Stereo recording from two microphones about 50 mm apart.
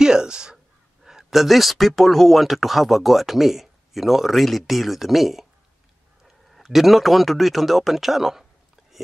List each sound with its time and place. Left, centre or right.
0.0 s speech: centre